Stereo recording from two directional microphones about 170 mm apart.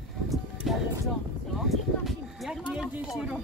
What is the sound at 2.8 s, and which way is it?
Speech, centre (ahead or behind).